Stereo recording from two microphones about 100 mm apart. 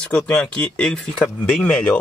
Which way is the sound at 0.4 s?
10° left (ahead or behind).